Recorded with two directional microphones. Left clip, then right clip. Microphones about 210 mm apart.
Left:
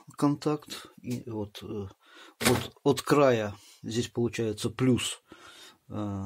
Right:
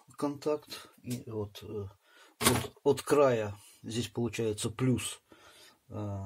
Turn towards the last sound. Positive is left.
turn(degrees=45)  # may be behind; listen again after turning